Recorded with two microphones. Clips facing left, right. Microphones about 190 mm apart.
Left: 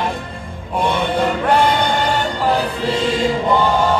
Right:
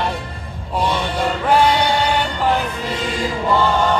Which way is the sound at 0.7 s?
55° left (ahead or behind).